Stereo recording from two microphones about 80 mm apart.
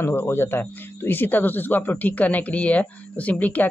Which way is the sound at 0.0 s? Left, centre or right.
Left.